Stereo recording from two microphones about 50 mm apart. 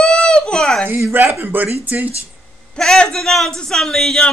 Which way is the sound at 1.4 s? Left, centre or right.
Right.